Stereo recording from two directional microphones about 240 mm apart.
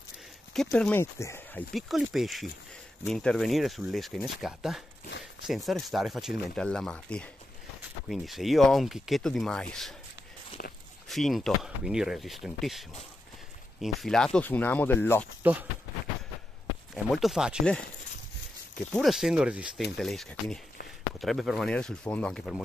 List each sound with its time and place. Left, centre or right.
0.5 s speech: centre
10.6 s walk: left
11.1 s speech: centre
15.4 s speech: centre
16.9 s speech: centre
18.9 s speech: centre